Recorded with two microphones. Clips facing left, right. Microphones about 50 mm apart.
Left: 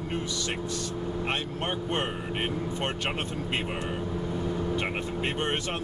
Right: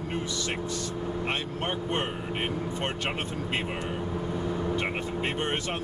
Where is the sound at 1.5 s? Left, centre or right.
Centre.